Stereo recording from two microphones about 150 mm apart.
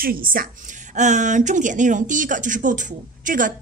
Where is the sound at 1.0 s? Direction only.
55° right (ahead or behind).